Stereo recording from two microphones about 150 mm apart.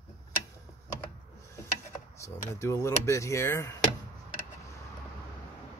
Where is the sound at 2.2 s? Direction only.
20° left (ahead or behind).